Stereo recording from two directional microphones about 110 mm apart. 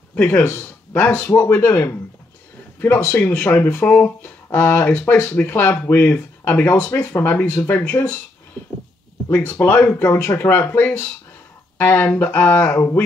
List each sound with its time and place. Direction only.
0.1 s speech: 15° left (ahead or behind)
0.4 s speech: 25° left (ahead or behind)
0.9 s speech: 15° left (ahead or behind)
7.4 s speech: 30° left (ahead or behind)
7.7 s speech: 15° left (ahead or behind)
9.6 s speech: 15° left (ahead or behind)